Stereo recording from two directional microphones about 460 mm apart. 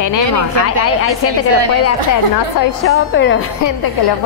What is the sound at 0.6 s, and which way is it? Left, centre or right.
Speech, left.